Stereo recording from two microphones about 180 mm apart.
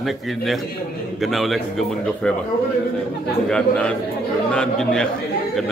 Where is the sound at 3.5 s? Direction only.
5° left (ahead or behind).